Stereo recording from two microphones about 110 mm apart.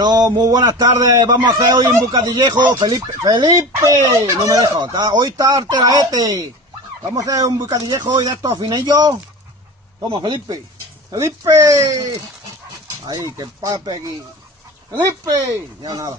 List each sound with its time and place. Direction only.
0.0 s speech: 35° right (ahead or behind)
3.8 s speech: 30° right (ahead or behind)
11.1 s speech: 30° right (ahead or behind)
15.2 s speech: 35° right (ahead or behind)